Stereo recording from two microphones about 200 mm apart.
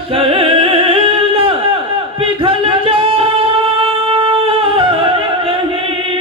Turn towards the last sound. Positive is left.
turn(degrees=-25)  # may be behind; listen again after turning